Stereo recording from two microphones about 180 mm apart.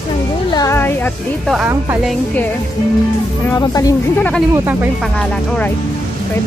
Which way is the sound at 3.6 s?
20° left (ahead or behind).